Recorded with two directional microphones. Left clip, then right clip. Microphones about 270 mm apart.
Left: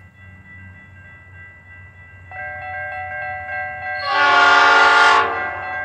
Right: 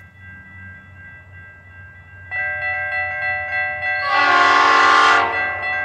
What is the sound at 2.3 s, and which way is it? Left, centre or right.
Wind chime, right.